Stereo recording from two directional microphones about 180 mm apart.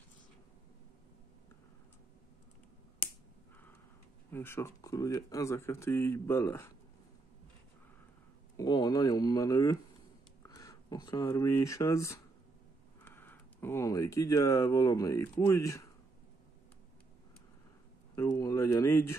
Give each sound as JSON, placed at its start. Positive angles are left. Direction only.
{"t": 4.3, "sound": "speech", "side_deg": 10}
{"t": 8.5, "sound": "speech", "side_deg": 20}
{"t": 18.1, "sound": "a sound", "side_deg": 15}